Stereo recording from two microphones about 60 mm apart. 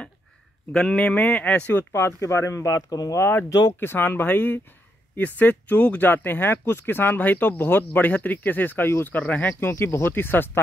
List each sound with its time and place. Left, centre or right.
0.7 s speech: centre
1.9 s speech: left
3.8 s speech: left
9.6 s speech: left